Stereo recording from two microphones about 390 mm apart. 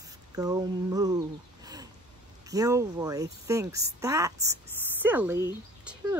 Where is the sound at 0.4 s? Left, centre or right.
Centre.